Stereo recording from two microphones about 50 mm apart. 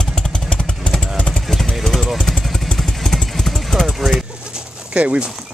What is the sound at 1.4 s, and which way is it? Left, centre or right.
Vehicle, centre.